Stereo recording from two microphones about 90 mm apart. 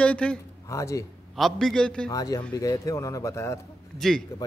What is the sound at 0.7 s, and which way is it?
Speech, 35° left (ahead or behind).